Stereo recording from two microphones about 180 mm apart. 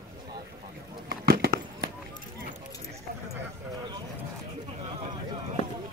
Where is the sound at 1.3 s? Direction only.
55° right (ahead or behind).